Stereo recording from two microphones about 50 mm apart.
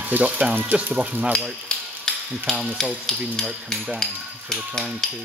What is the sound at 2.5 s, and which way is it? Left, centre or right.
Speech, centre.